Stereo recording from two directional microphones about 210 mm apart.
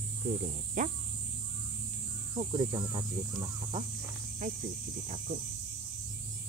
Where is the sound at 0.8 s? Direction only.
35° right (ahead or behind).